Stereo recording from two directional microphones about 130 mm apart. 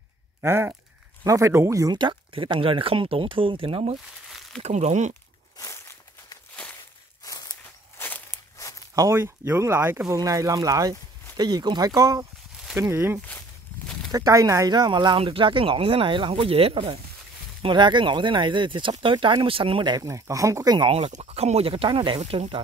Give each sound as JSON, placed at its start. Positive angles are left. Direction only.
{"t": 0.4, "sound": "speech", "side_deg": -20}
{"t": 4.3, "sound": "crumpling", "side_deg": 0}
{"t": 4.6, "sound": "speech", "side_deg": -60}
{"t": 5.6, "sound": "walk", "side_deg": 25}
{"t": 8.0, "sound": "walk", "side_deg": 15}
{"t": 8.9, "sound": "speech", "side_deg": -25}
{"t": 10.0, "sound": "speech", "side_deg": -30}
{"t": 20.1, "sound": "speech", "side_deg": -25}
{"t": 20.9, "sound": "speech", "side_deg": -55}
{"t": 22.2, "sound": "speech", "side_deg": -50}